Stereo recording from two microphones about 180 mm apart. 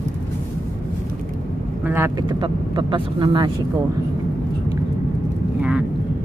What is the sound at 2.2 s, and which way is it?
Speech, 25° right (ahead or behind).